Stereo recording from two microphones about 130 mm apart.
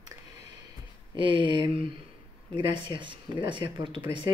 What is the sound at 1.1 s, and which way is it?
Speech, 40° right (ahead or behind).